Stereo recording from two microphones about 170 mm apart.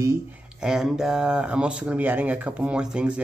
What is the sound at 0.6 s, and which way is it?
Speech, 5° right (ahead or behind).